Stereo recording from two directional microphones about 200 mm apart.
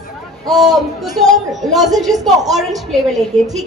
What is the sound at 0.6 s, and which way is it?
A man's voice, centre (ahead or behind).